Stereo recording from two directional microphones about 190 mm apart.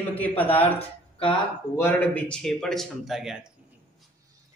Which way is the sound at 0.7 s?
30° left (ahead or behind).